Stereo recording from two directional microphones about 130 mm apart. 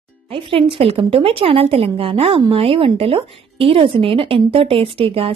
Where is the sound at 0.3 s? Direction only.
45° right (ahead or behind).